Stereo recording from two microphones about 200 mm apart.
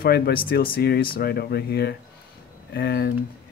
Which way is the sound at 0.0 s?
50° left (ahead or behind).